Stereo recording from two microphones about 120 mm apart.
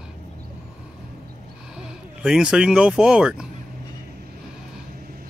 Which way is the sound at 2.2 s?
5° right (ahead or behind).